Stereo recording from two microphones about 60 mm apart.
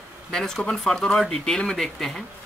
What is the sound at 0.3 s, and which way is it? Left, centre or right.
Speech, centre.